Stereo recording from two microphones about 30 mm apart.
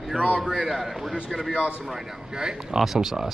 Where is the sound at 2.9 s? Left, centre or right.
Centre.